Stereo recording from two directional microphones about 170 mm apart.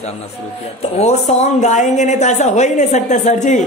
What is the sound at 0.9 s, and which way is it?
A woman's voice, 40° left (ahead or behind).